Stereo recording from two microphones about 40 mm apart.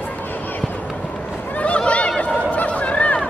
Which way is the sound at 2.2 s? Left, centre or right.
Left.